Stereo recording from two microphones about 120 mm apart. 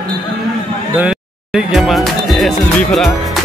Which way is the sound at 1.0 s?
5° right (ahead or behind).